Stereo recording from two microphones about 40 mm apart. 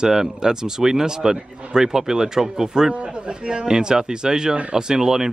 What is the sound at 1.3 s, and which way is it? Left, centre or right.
Speech, right.